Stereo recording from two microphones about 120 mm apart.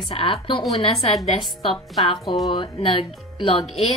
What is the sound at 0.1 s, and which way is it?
A woman's voice, 50° left (ahead or behind).